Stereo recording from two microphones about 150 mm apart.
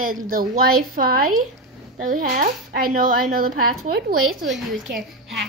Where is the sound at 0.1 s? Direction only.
70° right (ahead or behind).